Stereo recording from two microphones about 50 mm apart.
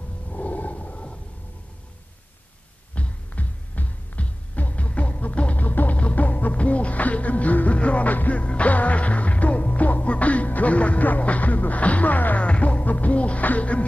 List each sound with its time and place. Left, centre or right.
0.3 s a sound: left
2.9 s heart sounds: left
12.4 s music: left